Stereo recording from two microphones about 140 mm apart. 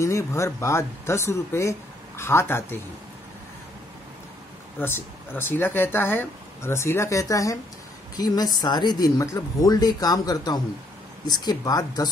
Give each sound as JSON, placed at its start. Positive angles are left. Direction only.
{"t": 0.0, "sound": "speech", "side_deg": 20}
{"t": 4.7, "sound": "speech", "side_deg": 15}
{"t": 8.5, "sound": "speech", "side_deg": 30}